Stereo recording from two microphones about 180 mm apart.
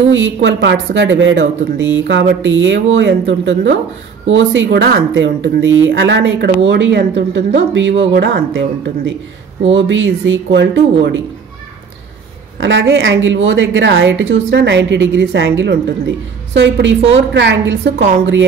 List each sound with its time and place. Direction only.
0.1 s a woman's voice: 90° right
4.7 s a woman's voice: 80° right
8.0 s speech: 70° right (ahead or behind)
9.7 s a woman's voice: 90° right
12.5 s a woman's voice: 90° right